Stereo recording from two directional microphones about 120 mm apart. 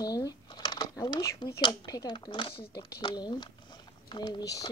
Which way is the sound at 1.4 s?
35° left (ahead or behind).